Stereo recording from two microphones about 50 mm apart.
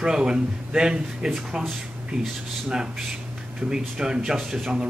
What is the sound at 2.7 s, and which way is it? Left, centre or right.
Speech, centre.